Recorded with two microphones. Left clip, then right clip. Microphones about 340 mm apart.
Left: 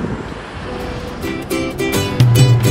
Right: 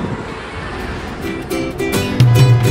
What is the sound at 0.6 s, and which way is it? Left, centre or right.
Music, right.